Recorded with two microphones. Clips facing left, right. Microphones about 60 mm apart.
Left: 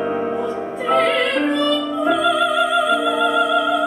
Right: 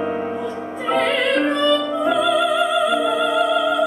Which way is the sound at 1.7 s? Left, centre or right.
Right.